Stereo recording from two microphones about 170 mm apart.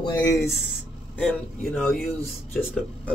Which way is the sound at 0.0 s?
20° left (ahead or behind).